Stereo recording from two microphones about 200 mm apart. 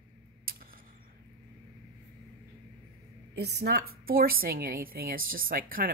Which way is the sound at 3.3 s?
55° right (ahead or behind).